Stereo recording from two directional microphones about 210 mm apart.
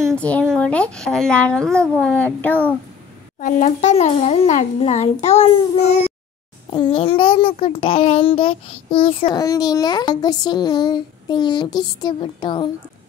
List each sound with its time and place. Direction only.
0.0 s a child's voice: 5° left (ahead or behind)
3.3 s a child's voice: 40° left (ahead or behind)
6.7 s a child's voice: 25° left (ahead or behind)